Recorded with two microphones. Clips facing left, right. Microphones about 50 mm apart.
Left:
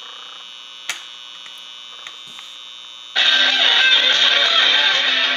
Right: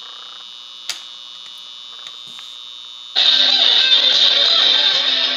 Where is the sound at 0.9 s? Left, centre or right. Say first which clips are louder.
Left 3 dB; left.